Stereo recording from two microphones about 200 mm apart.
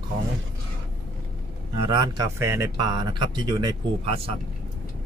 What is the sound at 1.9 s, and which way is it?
Speech, 20° right (ahead or behind).